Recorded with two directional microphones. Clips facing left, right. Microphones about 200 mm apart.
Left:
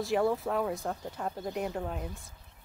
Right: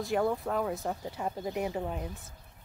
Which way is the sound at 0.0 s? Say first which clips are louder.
Left 1 dB; centre (ahead or behind).